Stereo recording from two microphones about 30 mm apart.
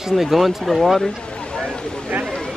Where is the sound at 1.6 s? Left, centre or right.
Left.